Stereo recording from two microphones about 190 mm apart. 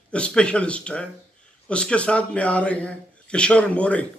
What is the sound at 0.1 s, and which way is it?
A man's voice, 5° left (ahead or behind).